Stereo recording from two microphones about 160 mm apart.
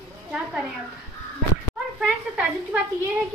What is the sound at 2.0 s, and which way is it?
Speech, 5° right (ahead or behind).